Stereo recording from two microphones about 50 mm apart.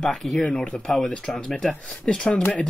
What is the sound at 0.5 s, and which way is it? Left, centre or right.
Speech, centre.